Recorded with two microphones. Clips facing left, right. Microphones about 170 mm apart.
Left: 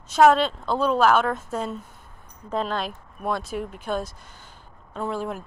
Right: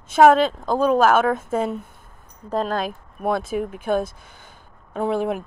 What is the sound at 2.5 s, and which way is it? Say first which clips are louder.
Speech: right 3 dB; 45° right (ahead or behind).